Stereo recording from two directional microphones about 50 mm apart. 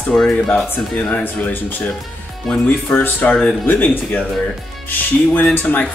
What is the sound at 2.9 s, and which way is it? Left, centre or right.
Speech, left.